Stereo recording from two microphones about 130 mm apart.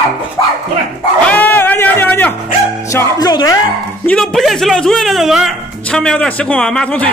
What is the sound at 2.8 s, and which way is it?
Speech, 25° left (ahead or behind).